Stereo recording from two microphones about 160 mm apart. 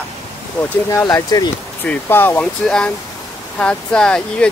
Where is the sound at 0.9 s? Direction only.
20° left (ahead or behind).